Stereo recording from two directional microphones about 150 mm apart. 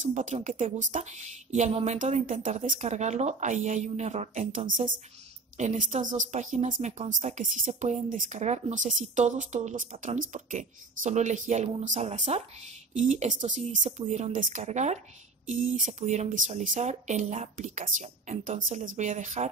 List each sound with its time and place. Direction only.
0.0 s speech: 55° right (ahead or behind)
2.8 s speech: 50° right (ahead or behind)